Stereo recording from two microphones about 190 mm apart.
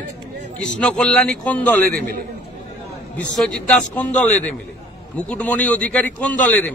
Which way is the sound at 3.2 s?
5° left (ahead or behind).